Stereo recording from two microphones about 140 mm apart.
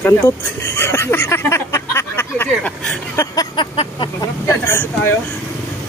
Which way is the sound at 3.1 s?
25° left (ahead or behind).